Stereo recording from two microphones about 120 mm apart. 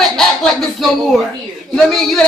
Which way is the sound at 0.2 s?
Centre (ahead or behind).